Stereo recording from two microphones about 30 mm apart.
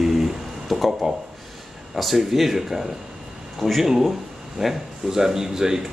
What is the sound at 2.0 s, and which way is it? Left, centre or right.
Speech, centre.